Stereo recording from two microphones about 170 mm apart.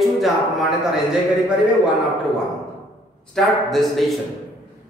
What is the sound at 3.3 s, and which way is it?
Speech, centre (ahead or behind).